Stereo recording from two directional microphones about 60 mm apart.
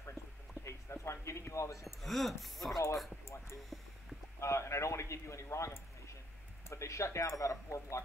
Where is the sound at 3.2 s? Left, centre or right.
Left.